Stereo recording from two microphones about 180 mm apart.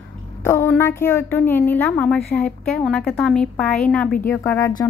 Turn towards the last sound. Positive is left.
turn(degrees=15)  # may be behind; listen again after turning